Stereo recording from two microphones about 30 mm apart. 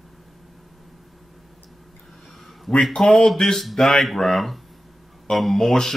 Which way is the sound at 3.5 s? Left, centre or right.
Centre.